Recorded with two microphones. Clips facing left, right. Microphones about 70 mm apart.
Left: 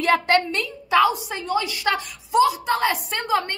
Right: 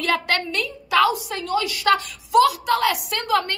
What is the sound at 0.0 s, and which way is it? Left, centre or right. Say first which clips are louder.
A woman's voice: left 4 dB; left.